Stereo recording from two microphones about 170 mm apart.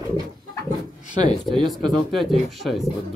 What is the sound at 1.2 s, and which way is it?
Speech, 25° right (ahead or behind).